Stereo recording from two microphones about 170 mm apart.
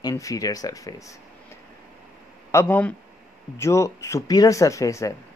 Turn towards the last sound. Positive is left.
turn(degrees=20)  # may be behind; listen again after turning